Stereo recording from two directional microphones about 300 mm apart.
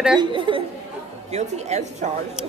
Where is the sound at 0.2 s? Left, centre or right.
Centre.